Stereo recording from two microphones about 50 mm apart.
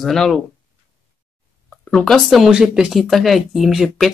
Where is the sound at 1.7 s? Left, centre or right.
Left.